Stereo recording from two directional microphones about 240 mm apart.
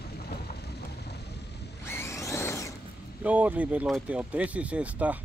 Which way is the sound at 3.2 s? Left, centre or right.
Centre.